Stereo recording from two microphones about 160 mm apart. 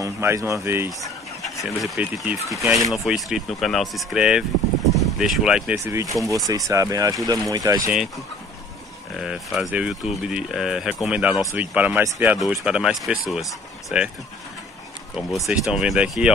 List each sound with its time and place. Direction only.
0.0 s speech: 20° right (ahead or behind)
1.4 s speech: centre (ahead or behind)
5.9 s speech: 20° right (ahead or behind)
9.2 s speech: 5° right (ahead or behind)
15.1 s speech: centre (ahead or behind)